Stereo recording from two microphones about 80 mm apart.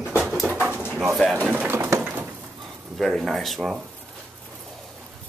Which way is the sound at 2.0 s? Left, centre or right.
Centre.